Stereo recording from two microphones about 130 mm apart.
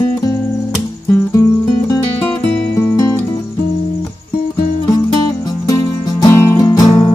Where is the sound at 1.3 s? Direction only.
30° left (ahead or behind).